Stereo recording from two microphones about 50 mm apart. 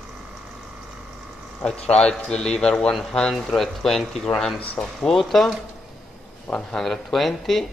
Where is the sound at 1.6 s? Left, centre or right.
Centre.